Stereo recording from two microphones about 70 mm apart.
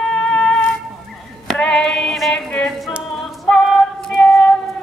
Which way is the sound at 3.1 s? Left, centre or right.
Centre.